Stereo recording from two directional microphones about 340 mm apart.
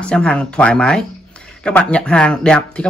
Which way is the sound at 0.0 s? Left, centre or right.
Centre.